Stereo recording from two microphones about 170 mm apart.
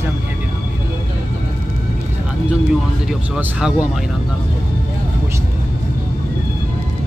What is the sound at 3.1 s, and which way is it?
Speech, 5° right (ahead or behind).